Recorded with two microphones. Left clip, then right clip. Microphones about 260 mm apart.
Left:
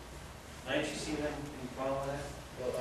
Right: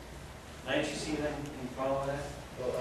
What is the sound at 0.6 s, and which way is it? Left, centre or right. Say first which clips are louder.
A man's voice: right 2 dB; centre.